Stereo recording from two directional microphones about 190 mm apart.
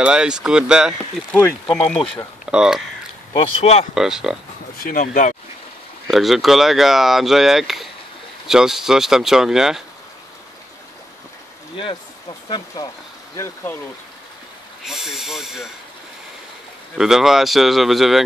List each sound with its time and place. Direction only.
0.0 s speech: 5° right (ahead or behind)
1.3 s speech: 5° left (ahead or behind)
3.3 s speech: 35° left (ahead or behind)
3.9 s speech: 5° right (ahead or behind)
4.7 s speech: 45° left (ahead or behind)
6.0 s speech: centre (ahead or behind)
11.7 s speech: 25° left (ahead or behind)
14.9 s snort: centre (ahead or behind)
16.9 s speech: centre (ahead or behind)